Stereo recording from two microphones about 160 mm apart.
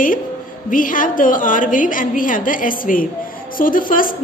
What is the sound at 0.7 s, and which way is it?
A woman's voice, 60° left (ahead or behind).